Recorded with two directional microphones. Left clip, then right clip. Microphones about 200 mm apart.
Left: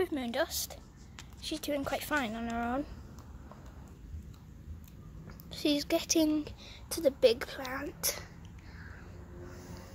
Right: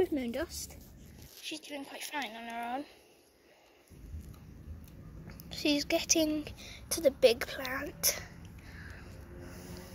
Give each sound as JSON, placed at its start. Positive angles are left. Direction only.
{"t": 0.0, "sound": "speech", "side_deg": 20}
{"t": 5.5, "sound": "a woman's voice", "side_deg": 15}
{"t": 6.6, "sound": "speech", "side_deg": 5}
{"t": 9.6, "sound": "vehicle", "side_deg": 15}